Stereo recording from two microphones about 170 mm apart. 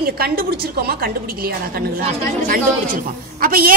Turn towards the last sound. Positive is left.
turn(degrees=-60)  # may be behind; listen again after turning